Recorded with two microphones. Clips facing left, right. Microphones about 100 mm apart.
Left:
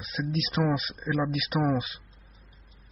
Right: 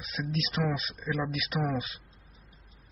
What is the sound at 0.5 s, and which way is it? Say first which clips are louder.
Speech: left 4 dB; 35° left (ahead or behind).